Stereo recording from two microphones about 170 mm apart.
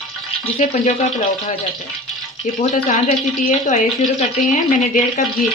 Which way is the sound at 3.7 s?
45° left (ahead or behind).